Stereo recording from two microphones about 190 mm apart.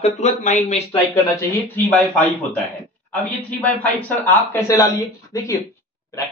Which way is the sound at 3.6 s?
10° left (ahead or behind).